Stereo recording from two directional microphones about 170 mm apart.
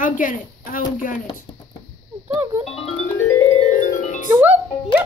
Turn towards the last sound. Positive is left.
turn(degrees=-10)  # may be behind; listen again after turning